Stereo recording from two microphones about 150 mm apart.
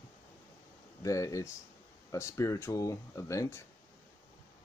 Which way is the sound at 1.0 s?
20° left (ahead or behind).